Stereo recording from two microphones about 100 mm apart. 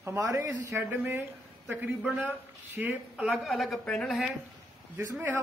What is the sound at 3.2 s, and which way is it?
A woman's voice, 5° right (ahead or behind).